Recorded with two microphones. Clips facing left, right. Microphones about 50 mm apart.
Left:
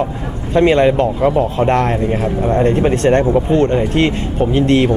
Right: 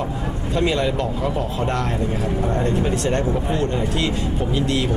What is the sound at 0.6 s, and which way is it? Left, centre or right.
Speech, left.